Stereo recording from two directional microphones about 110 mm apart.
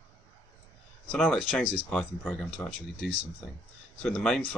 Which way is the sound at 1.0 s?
5° left (ahead or behind).